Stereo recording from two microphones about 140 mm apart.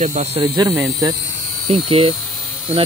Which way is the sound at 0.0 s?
55° right (ahead or behind).